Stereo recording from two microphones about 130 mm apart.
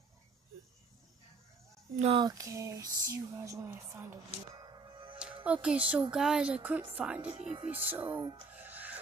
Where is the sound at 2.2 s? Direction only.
25° right (ahead or behind).